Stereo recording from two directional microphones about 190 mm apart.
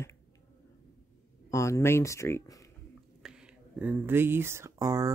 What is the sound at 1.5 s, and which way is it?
Speech, 15° left (ahead or behind).